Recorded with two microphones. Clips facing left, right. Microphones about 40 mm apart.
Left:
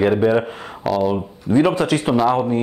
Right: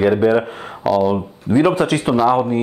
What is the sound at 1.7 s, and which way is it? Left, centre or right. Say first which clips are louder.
Speech: right 1 dB; right.